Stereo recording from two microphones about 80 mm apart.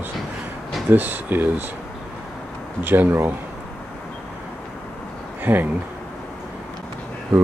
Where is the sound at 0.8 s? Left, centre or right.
Right.